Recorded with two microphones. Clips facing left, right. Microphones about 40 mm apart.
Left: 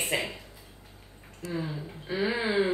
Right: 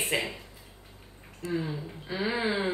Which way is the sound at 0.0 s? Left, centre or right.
Centre.